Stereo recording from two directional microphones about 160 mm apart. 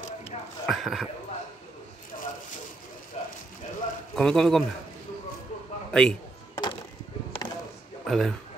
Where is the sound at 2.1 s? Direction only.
55° left (ahead or behind).